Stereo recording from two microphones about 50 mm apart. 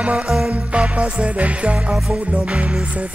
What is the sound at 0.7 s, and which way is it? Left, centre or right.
Music, right.